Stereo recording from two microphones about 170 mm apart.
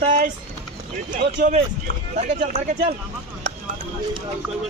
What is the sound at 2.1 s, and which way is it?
Speech, 40° right (ahead or behind).